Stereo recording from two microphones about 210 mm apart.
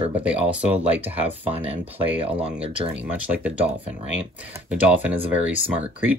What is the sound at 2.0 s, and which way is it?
Speech, 25° right (ahead or behind).